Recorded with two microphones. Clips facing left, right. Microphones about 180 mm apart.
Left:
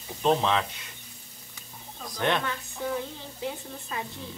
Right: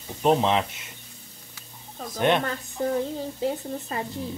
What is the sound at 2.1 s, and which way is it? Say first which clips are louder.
Speech: right 5 dB; 20° right (ahead or behind).